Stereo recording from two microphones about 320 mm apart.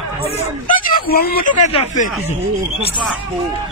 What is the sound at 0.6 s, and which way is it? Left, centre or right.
Speech, left.